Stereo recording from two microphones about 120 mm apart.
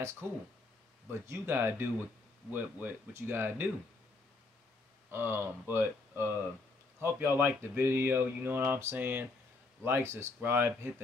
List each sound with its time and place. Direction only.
0.2 s speech: 20° right (ahead or behind)
5.1 s speech: 20° right (ahead or behind)